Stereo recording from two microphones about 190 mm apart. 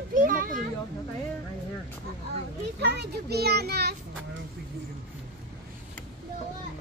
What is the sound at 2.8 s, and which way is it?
A child's voice, 60° right (ahead or behind).